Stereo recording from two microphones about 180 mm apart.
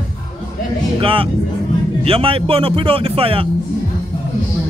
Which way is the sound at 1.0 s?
30° right (ahead or behind).